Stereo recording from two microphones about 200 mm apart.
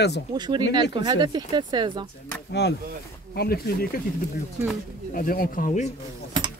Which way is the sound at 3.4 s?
50° left (ahead or behind).